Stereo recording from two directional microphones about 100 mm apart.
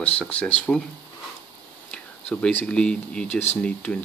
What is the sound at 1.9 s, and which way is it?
Speech, 10° left (ahead or behind).